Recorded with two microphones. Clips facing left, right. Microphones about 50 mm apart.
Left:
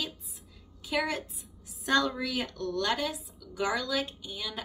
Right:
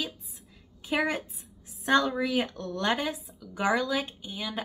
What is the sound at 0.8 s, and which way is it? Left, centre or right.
A woman's voice, right.